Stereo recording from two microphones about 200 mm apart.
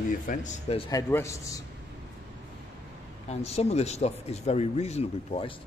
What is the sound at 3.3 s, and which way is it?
Speech, 30° left (ahead or behind).